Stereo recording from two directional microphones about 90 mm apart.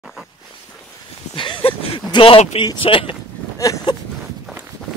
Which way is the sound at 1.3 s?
65° left (ahead or behind).